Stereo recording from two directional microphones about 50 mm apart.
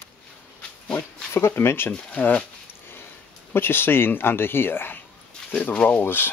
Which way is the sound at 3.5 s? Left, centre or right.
Left.